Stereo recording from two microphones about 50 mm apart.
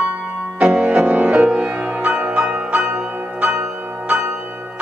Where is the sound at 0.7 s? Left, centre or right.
Right.